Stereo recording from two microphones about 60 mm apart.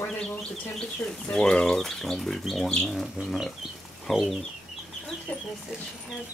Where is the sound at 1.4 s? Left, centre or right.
Centre.